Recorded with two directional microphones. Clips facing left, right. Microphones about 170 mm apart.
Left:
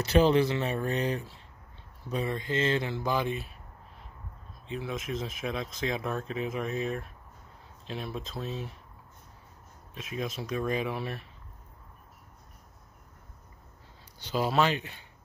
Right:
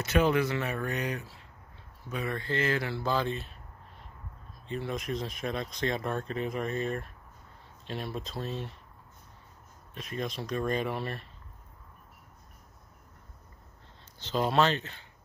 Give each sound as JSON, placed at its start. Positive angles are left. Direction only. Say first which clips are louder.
{"t": 0.0, "sound": "speech", "louder": "left 3 dB", "side_deg": 30}
{"t": 2.3, "sound": "speech", "louder": "left 1 dB", "side_deg": 20}
{"t": 4.6, "sound": "speech", "louder": "right 1 dB", "side_deg": 0}
{"t": 9.9, "sound": "speech", "louder": "even", "side_deg": 5}
{"t": 14.2, "sound": "speech", "louder": "even", "side_deg": 5}